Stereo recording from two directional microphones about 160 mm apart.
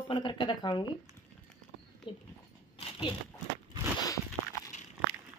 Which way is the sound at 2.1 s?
35° left (ahead or behind).